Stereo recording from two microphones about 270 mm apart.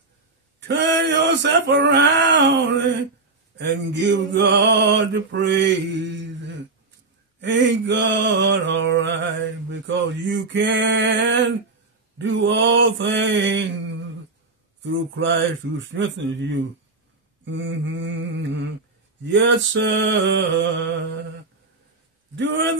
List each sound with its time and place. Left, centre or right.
0.6 s mantra: right
7.3 s mantra: right
12.2 s a man's voice: right
19.2 s mantra: right
22.3 s a man's voice: right